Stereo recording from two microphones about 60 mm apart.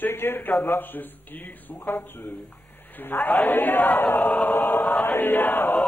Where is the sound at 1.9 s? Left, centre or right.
Left.